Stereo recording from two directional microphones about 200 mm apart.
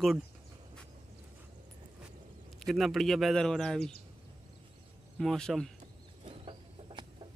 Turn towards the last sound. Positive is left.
turn(degrees=-25)  # may be behind; listen again after turning